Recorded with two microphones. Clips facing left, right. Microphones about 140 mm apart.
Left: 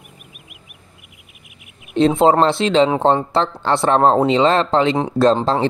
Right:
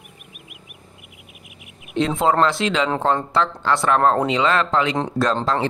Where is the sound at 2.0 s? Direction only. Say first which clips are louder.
Left 5 dB; 30° left (ahead or behind).